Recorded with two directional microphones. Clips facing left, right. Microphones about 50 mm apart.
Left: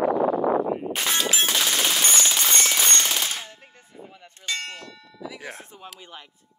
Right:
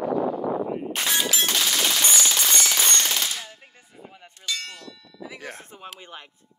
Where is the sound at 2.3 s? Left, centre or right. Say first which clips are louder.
Left 1 dB; left.